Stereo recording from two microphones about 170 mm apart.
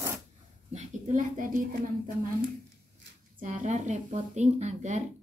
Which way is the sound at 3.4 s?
45° right (ahead or behind).